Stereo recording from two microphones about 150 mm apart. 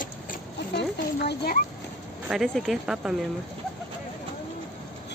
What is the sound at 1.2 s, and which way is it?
Speech, 90° left.